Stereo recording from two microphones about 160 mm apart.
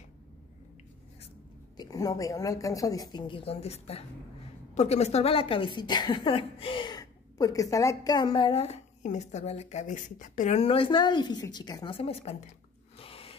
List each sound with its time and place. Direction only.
1.8 s a woman's voice: 25° left (ahead or behind)